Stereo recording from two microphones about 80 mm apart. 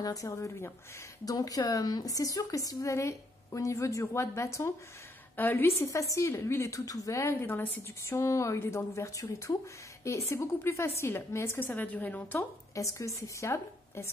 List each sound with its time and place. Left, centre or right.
0.0 s speech: left
5.3 s a woman's voice: left
5.7 s a woman's voice: left
7.3 s a woman's voice: left
8.2 s a woman's voice: left
11.7 s a woman's voice: left
12.7 s a woman's voice: left